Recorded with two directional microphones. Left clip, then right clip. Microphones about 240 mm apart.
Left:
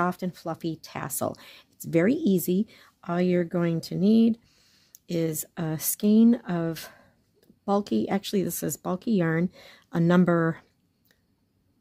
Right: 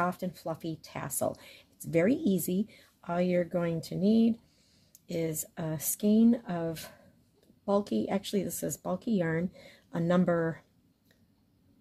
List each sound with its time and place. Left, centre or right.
0.0 s speech: left